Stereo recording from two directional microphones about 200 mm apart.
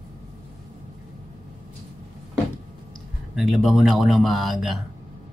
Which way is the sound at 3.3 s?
Centre (ahead or behind).